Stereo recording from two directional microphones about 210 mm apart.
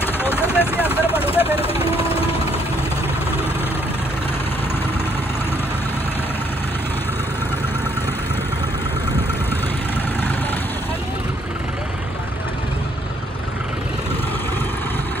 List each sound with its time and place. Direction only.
0.0 s vehicle: 10° left (ahead or behind)
1.0 s vehicle: 25° left (ahead or behind)